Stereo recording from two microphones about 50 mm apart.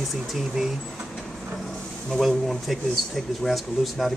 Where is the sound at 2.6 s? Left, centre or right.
Centre.